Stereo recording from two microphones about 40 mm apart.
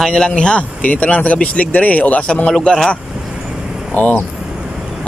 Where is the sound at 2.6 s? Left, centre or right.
Left.